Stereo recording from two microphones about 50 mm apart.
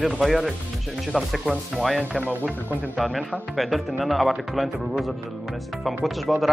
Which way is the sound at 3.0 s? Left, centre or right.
Centre.